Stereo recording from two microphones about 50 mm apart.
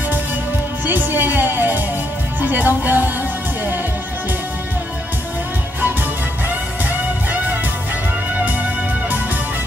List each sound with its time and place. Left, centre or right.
0.8 s music: right
6.9 s music: right